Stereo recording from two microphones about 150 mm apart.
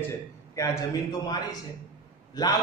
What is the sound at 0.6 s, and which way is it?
A man's voice, 20° left (ahead or behind).